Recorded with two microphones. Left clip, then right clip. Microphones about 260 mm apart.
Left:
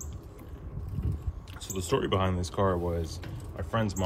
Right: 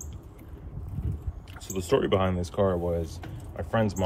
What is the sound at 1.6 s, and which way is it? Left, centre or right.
Speech, centre.